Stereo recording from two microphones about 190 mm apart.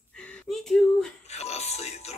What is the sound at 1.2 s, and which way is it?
Music, 35° left (ahead or behind).